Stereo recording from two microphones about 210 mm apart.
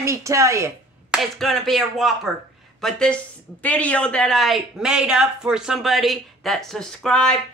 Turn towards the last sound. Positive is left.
turn(degrees=5)  # may be behind; listen again after turning